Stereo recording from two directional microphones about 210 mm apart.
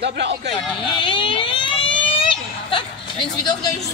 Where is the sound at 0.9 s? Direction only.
25° left (ahead or behind).